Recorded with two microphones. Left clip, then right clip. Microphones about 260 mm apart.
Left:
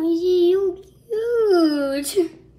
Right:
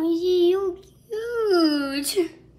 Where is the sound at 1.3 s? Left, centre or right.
Centre.